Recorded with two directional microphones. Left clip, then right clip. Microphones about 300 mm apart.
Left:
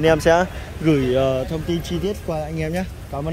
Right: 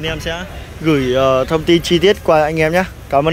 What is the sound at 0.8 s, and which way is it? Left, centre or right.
Speech, centre.